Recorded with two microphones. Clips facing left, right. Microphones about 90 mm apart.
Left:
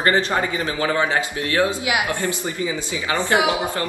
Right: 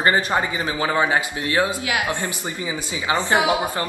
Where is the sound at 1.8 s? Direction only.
20° left (ahead or behind).